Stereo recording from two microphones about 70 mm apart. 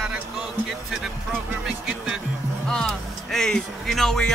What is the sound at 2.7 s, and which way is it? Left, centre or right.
Speech, centre.